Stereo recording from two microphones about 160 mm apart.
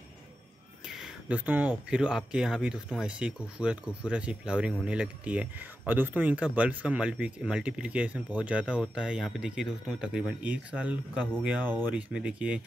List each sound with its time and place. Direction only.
0.8 s speech: 5° right (ahead or behind)